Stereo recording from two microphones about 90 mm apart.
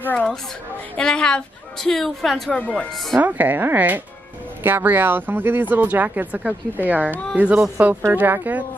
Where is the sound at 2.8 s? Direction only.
Centre (ahead or behind).